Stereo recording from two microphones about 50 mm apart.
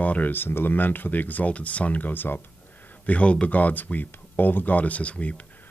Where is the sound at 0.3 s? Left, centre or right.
Left.